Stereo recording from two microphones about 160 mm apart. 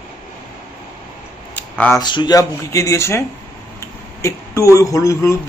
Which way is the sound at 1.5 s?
10° left (ahead or behind).